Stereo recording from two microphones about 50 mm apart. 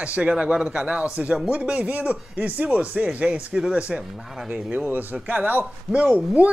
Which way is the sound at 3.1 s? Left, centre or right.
Centre.